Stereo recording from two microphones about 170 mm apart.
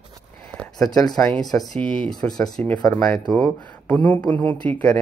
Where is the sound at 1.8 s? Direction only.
30° right (ahead or behind).